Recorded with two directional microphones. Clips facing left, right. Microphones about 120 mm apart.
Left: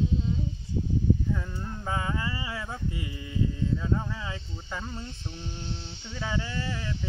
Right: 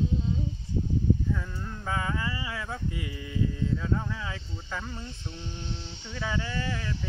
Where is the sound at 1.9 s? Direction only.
20° left (ahead or behind).